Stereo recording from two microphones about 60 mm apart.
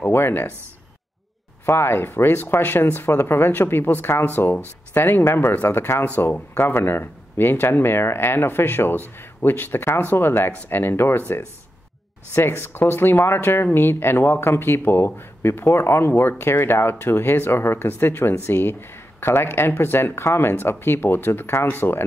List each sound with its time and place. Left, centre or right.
0.0 s speech: left
1.7 s speech: left
6.3 s speech: left
6.7 s speech: left